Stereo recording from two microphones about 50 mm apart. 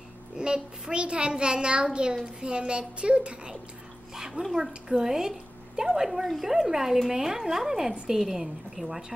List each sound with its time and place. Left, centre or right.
0.4 s a child's voice: centre
4.1 s speech: centre